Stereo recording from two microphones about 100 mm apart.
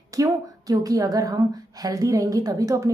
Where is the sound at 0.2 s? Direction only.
35° right (ahead or behind).